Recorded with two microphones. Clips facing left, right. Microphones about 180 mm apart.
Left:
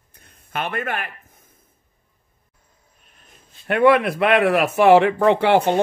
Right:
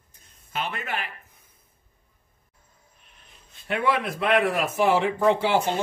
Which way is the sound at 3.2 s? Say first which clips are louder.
Left 4 dB; 50° left (ahead or behind).